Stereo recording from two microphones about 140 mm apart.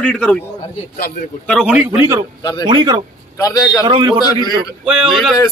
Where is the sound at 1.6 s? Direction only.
10° right (ahead or behind).